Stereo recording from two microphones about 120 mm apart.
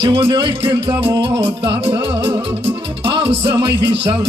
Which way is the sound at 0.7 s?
45° right (ahead or behind).